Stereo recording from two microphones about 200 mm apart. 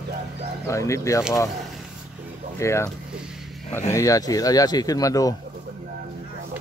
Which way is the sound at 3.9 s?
15° left (ahead or behind).